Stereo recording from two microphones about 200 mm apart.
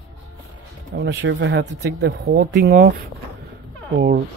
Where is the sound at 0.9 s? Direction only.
60° right (ahead or behind).